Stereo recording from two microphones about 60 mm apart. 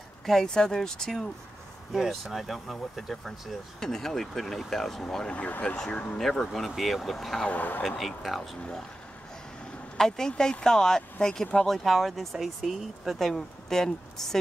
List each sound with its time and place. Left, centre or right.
0.2 s speech: centre
1.9 s speech: centre
5.3 s speech: left
6.1 s speech: centre
7.4 s speech: left
7.8 s speech: centre
9.9 s speech: centre